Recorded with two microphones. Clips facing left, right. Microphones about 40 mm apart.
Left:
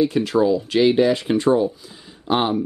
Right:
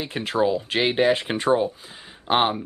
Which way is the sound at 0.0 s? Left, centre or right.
Right.